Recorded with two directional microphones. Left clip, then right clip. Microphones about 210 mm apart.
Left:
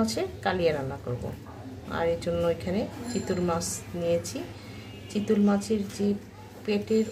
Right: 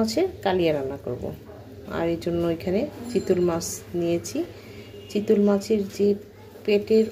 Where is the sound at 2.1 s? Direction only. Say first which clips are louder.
Right 1 dB; 20° right (ahead or behind).